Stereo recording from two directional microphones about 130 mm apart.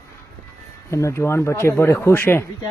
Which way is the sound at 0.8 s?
20° left (ahead or behind).